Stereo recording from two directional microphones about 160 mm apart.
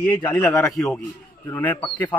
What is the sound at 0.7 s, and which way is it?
A man's voice, 5° left (ahead or behind).